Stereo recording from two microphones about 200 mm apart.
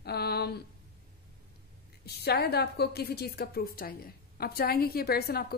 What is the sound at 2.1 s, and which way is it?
A woman's voice, 55° left (ahead or behind).